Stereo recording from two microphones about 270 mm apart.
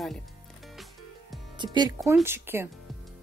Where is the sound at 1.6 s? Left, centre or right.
Centre.